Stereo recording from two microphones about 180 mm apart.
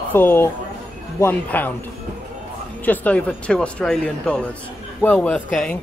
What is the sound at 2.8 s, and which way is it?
Speech, 10° left (ahead or behind).